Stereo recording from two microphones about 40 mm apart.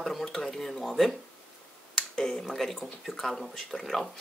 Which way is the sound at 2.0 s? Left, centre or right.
Centre.